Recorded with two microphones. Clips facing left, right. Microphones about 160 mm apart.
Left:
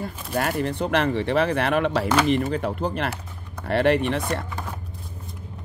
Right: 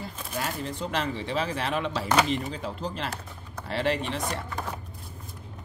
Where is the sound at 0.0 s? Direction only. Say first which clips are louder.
Left 7 dB; 55° left (ahead or behind).